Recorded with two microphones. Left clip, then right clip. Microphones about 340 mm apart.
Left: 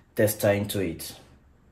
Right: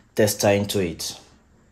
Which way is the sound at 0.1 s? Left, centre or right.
Right.